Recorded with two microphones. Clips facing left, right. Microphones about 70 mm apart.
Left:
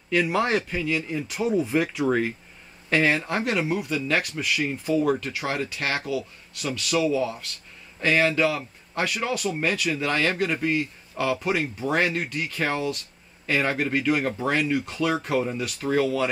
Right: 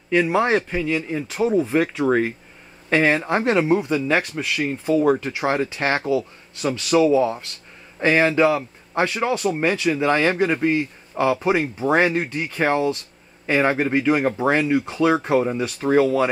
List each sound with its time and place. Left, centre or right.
0.1 s speech: centre